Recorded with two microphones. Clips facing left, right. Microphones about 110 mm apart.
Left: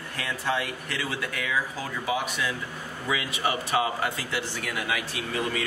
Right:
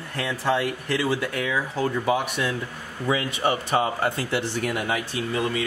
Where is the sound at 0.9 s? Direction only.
45° right (ahead or behind).